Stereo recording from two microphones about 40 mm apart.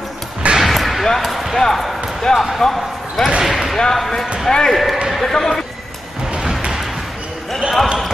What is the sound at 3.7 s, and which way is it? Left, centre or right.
Speech, centre.